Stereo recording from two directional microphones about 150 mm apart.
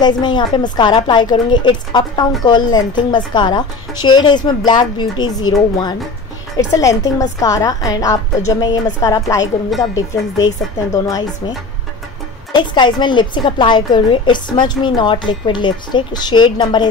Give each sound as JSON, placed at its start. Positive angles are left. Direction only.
{"t": 0.0, "sound": "a woman's voice", "side_deg": 30}
{"t": 12.5, "sound": "a woman's voice", "side_deg": 30}